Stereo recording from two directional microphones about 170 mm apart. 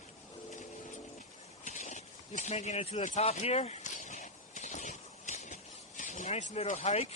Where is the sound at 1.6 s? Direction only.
45° left (ahead or behind).